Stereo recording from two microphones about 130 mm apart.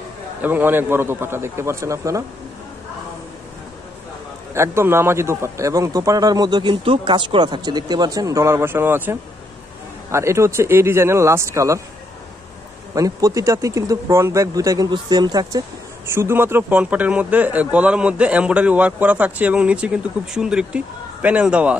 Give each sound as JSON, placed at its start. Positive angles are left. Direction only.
{"t": 0.4, "sound": "a man's voice", "side_deg": -15}
{"t": 4.6, "sound": "a man's voice", "side_deg": -20}
{"t": 12.9, "sound": "a man's voice", "side_deg": -25}
{"t": 16.1, "sound": "a man's voice", "side_deg": -20}